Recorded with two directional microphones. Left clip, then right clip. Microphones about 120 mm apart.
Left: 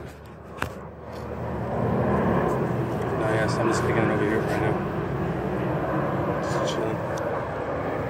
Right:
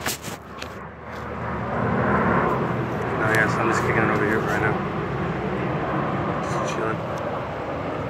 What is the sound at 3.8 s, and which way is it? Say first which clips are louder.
Vehicle: right 3 dB; 65° left (ahead or behind).